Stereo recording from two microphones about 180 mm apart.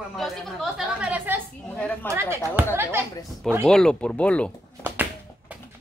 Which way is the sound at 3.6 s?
5° left (ahead or behind).